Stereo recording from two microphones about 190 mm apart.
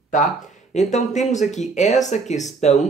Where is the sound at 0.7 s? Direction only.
40° left (ahead or behind).